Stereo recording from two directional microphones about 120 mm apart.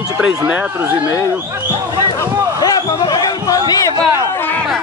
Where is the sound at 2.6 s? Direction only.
30° left (ahead or behind).